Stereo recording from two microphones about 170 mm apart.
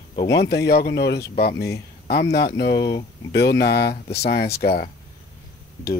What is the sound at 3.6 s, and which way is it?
Speech, 70° left (ahead or behind).